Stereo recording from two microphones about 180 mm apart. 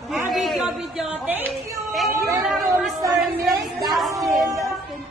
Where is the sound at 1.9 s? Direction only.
Centre (ahead or behind).